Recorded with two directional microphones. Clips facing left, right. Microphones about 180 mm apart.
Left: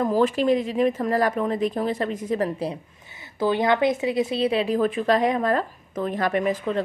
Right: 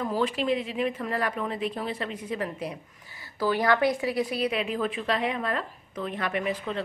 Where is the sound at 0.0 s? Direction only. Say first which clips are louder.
Left 7 dB; 45° left (ahead or behind).